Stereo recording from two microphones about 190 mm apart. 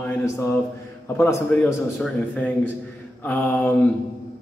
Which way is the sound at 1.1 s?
10° left (ahead or behind).